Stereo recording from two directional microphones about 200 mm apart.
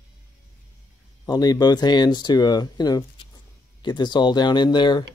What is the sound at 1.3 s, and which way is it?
Speech, 20° left (ahead or behind).